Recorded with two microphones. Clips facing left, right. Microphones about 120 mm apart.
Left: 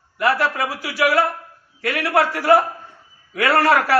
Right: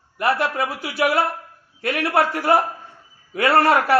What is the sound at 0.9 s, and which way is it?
A man's voice, 25° right (ahead or behind).